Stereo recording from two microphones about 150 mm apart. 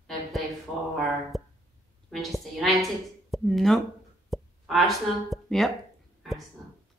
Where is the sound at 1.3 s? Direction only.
Centre (ahead or behind).